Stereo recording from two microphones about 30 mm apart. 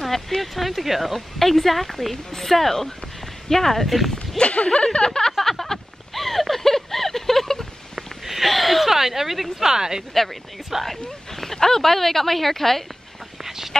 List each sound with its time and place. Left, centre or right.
0.4 s speech: centre
3.8 s speech: centre
4.4 s speech: left
5.4 s a sound: centre
8.5 s speech: centre
8.8 s speech: centre
9.7 s speech: centre
10.8 s speech: centre
13.4 s a sound: centre